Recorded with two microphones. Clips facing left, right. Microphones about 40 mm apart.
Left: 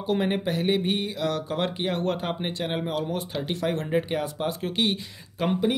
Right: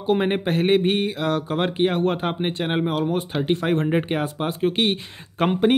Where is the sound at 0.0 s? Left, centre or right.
Right.